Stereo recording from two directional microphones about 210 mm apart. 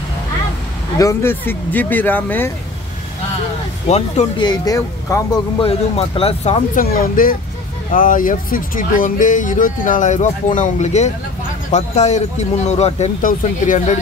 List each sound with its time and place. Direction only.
0.9 s speech: 15° left (ahead or behind)
3.9 s speech: 30° left (ahead or behind)
4.5 s speech: 15° left (ahead or behind); by 13.9 s 35° left (ahead or behind)